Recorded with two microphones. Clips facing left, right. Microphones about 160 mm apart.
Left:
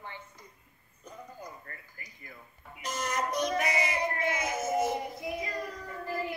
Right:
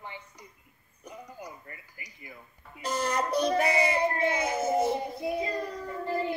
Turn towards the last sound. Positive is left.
turn(degrees=-30)  # may be behind; listen again after turning